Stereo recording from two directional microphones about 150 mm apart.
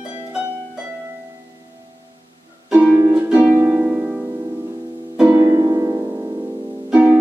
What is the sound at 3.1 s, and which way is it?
Music, 10° right (ahead or behind).